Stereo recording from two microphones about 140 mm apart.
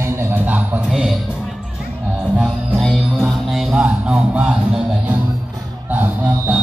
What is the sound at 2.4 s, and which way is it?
Music, centre (ahead or behind).